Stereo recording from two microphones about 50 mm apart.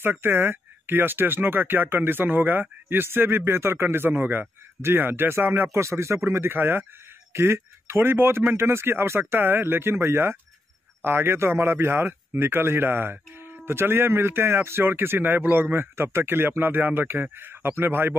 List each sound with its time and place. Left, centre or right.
0.0 s speech: right
5.7 s speech: right
7.3 s speech: right